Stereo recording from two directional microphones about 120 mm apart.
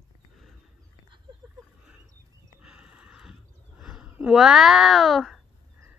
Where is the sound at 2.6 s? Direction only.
10° right (ahead or behind).